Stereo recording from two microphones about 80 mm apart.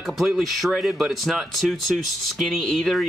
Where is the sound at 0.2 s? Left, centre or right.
Centre.